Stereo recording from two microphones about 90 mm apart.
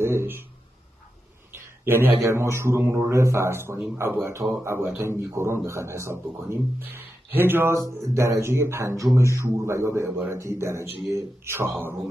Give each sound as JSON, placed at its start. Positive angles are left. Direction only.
{"t": 0.0, "sound": "a man's voice", "side_deg": -30}
{"t": 1.5, "sound": "a sound", "side_deg": -25}
{"t": 2.2, "sound": "a man's voice", "side_deg": -30}